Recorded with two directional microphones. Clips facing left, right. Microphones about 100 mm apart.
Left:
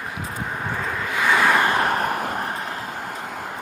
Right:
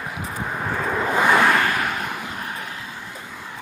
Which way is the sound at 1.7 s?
40° left (ahead or behind).